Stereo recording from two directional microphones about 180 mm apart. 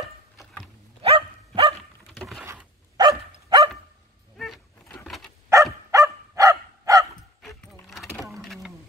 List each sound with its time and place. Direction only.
1.0 s dog: 30° right (ahead or behind)
2.1 s patter: centre (ahead or behind)
2.4 s dog: 20° right (ahead or behind)
5.0 s dog: centre (ahead or behind)
5.5 s dog: 15° right (ahead or behind)
7.8 s keys jangling: centre (ahead or behind)